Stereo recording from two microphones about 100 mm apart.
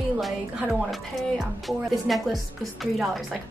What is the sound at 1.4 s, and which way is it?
A woman's voice, centre (ahead or behind).